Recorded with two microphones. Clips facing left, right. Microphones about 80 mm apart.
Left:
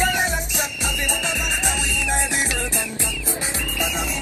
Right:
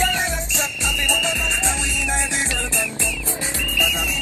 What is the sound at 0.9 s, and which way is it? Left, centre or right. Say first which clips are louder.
Music: right 4 dB; left.